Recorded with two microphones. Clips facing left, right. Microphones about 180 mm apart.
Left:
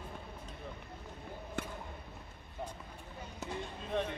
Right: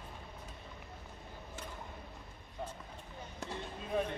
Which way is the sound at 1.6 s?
60° left (ahead or behind).